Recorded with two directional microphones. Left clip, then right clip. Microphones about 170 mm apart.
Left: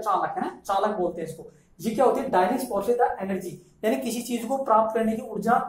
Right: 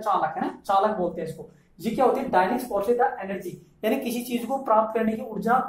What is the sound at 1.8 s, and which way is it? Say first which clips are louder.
Speech: even; 5° right (ahead or behind).